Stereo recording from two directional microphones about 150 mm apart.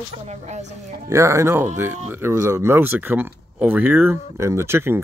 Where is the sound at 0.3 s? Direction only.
50° right (ahead or behind).